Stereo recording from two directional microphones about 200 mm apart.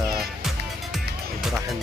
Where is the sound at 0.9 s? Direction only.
Centre (ahead or behind).